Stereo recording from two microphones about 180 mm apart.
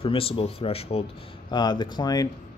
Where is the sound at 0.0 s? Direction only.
30° left (ahead or behind).